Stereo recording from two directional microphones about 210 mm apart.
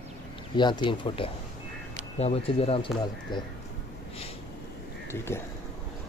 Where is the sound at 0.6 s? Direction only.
20° left (ahead or behind).